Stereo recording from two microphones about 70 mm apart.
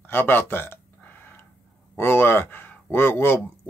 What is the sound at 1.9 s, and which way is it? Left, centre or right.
Speech, left.